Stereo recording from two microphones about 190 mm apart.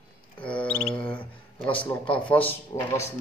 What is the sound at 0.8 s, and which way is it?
Owl, 25° left (ahead or behind).